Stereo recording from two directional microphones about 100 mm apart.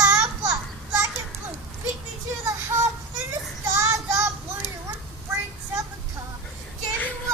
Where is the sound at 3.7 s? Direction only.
25° right (ahead or behind).